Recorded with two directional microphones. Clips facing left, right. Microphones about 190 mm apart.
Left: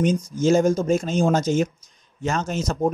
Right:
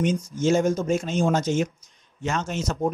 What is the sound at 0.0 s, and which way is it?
A man's voice, 35° left (ahead or behind).